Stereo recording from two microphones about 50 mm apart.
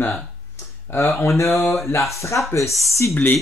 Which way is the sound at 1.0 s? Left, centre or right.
Left.